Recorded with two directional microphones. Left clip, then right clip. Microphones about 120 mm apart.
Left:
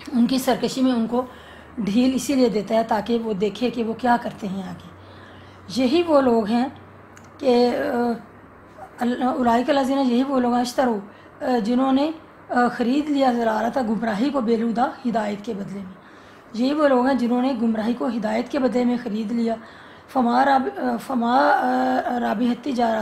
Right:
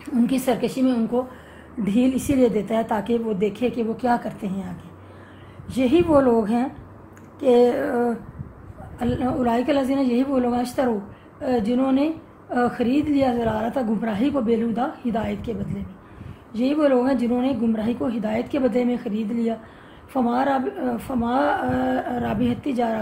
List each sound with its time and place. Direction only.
0.0 s a woman's voice: 20° right (ahead or behind)
2.4 s a woman's voice: 25° right (ahead or behind)
5.8 s a woman's voice: 20° right (ahead or behind)
16.5 s a woman's voice: 15° right (ahead or behind)